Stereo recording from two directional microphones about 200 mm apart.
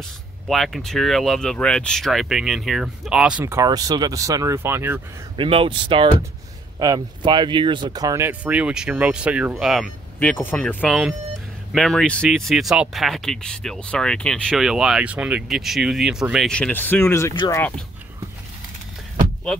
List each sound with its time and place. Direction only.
0.5 s speech: centre (ahead or behind)
5.4 s speech: 25° right (ahead or behind); by 9.9 s centre (ahead or behind)
10.1 s speech: 10° left (ahead or behind)